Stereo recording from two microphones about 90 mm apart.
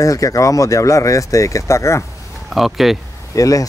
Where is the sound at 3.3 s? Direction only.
40° left (ahead or behind).